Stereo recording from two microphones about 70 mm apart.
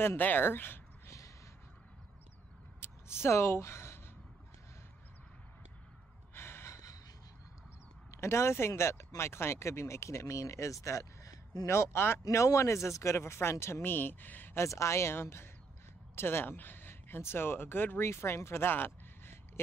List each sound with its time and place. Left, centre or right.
0.2 s speech: left
2.8 s a sound: left
6.3 s gasp: left
6.7 s gasp: left
8.1 s speech: left
12.3 s speech: left
14.6 s speech: left